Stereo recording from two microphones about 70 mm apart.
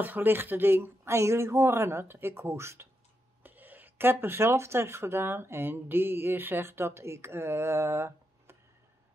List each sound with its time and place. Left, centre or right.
0.0 s speech: right
3.4 s speech: right